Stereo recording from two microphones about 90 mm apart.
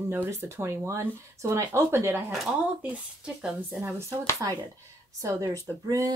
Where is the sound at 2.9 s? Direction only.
10° right (ahead or behind).